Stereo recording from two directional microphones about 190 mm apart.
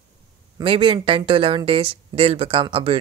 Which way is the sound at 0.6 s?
25° right (ahead or behind).